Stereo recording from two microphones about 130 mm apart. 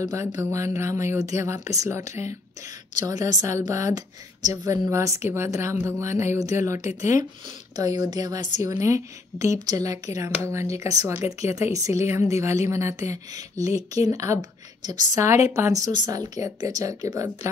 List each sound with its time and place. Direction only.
0.0 s a woman's voice: 25° right (ahead or behind)